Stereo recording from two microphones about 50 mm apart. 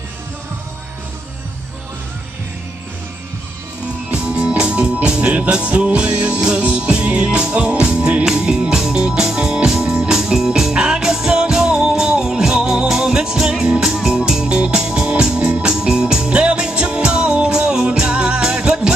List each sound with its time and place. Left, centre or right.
4.1 s music: right
10.1 s music: centre